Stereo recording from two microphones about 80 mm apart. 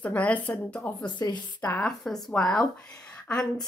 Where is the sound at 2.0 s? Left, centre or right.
Centre.